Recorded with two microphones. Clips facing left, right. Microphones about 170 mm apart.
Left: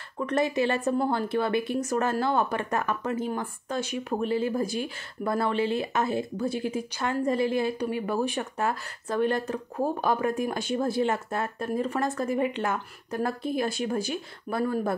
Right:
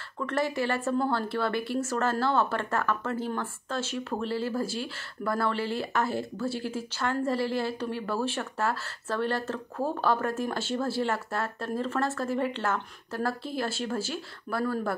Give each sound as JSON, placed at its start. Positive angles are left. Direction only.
{"t": 0.2, "sound": "speech", "side_deg": 20}